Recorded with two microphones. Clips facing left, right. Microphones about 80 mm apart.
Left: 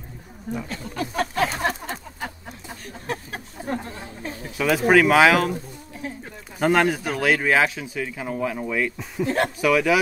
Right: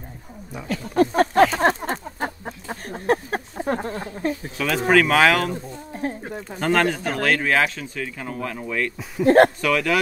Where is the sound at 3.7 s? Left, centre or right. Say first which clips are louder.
Right 4 dB; right.